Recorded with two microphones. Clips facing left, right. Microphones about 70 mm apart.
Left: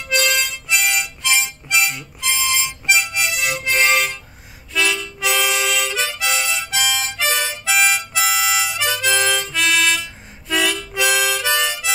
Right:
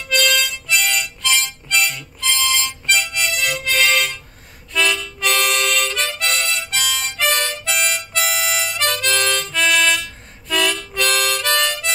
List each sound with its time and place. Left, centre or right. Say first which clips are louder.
0.0 s harmonica: right 1 dB; centre
3.4 s music: even; centre
4.7 s harmonica: right 1 dB; centre